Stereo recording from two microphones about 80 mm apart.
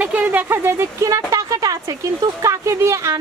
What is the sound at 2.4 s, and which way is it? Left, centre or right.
Speech, right.